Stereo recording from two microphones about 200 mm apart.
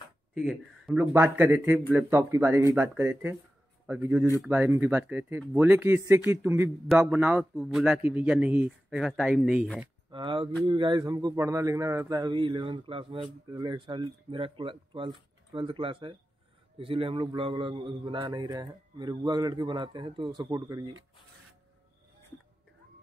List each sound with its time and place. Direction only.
0.3 s a man's voice: centre (ahead or behind)
10.1 s a man's voice: 25° right (ahead or behind)